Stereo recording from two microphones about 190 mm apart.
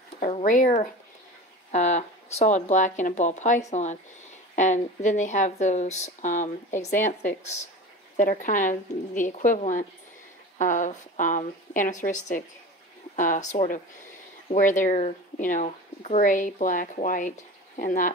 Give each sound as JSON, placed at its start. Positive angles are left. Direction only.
{"t": 0.3, "sound": "speech", "side_deg": 40}